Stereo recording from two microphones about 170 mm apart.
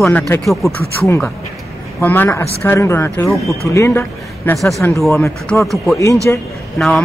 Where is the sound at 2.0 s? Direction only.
10° left (ahead or behind).